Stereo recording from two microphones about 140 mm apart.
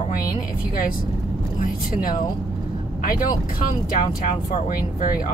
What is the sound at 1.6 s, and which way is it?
Speech, 90° left.